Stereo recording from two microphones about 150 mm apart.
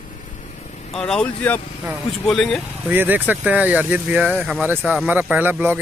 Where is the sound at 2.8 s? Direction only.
10° right (ahead or behind).